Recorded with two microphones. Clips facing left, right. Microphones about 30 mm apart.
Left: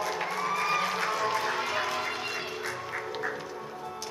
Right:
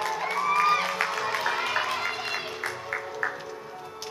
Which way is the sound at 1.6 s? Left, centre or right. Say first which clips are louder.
Right 3 dB; right.